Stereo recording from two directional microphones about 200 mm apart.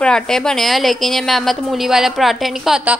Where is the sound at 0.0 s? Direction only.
5° left (ahead or behind).